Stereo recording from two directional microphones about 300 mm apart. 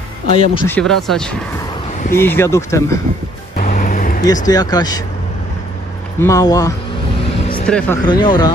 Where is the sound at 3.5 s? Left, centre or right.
Left.